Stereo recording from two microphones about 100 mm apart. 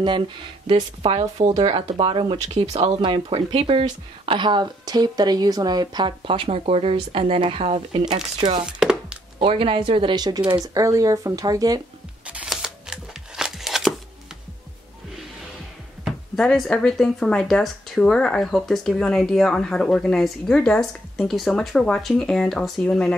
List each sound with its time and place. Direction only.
0.7 s speech: 70° right (ahead or behind); by 2.9 s 90° right
3.0 s speech: 65° right (ahead or behind)
4.3 s speech: 50° right (ahead or behind); by 7.8 s 80° right
8.6 s chopping: 5° right (ahead or behind)
9.4 s speech: 65° right (ahead or behind)
10.1 s speech: 45° right (ahead or behind)
10.6 s speech: 35° right (ahead or behind)
12.4 s a sound: 5° right (ahead or behind)
16.3 s speech: 5° left (ahead or behind)